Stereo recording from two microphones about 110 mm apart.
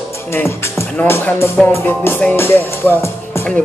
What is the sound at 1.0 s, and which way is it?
Music, 20° left (ahead or behind).